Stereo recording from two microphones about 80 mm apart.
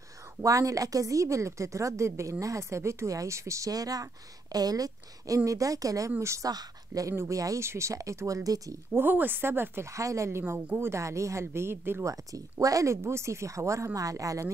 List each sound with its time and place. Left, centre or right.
0.4 s a woman's voice: right
8.9 s speech: right
9.9 s a woman's voice: right
12.1 s a woman's voice: right